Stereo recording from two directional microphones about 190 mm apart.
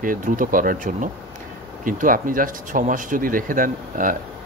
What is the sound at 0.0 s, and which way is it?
Speech, 45° right (ahead or behind).